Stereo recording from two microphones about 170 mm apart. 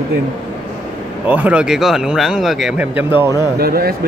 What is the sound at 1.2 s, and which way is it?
Speech, 10° right (ahead or behind).